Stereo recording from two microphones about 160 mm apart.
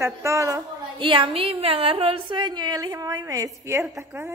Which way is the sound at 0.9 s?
30° right (ahead or behind).